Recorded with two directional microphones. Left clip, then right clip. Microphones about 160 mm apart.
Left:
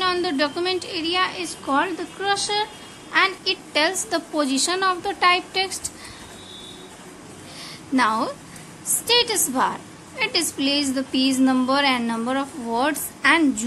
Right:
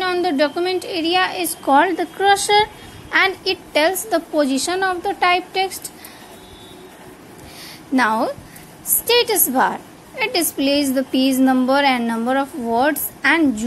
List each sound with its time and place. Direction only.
0.0 s a woman's voice: 20° right (ahead or behind); by 3.3 s 35° right (ahead or behind)
3.4 s a woman's voice: 20° right (ahead or behind)
7.9 s a woman's voice: 25° right (ahead or behind)